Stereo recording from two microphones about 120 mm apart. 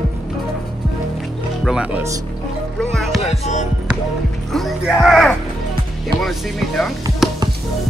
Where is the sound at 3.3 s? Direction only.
90° left.